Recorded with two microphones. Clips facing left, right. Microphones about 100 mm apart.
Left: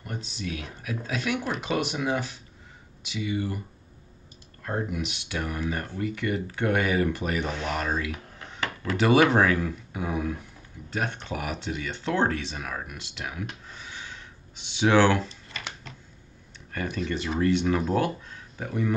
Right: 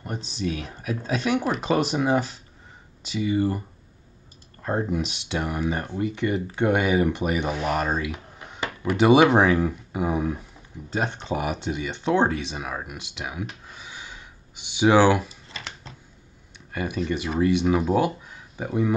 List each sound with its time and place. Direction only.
0.0 s speech: 25° right (ahead or behind)
4.6 s speech: 30° right (ahead or behind)
13.7 s a sound: 15° right (ahead or behind)
16.7 s speech: 15° right (ahead or behind)